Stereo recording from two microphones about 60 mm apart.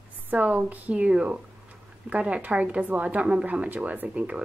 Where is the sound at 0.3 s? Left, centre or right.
Right.